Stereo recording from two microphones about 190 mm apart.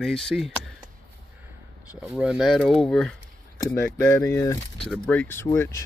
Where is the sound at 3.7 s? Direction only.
15° left (ahead or behind).